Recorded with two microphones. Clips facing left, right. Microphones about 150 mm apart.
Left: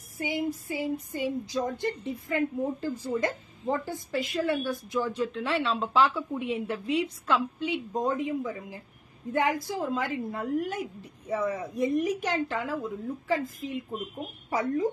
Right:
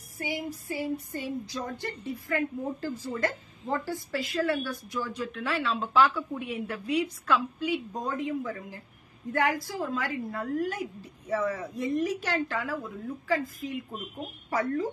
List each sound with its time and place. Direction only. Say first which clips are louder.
0.2 s a woman's voice: left 4 dB; 20° left (ahead or behind)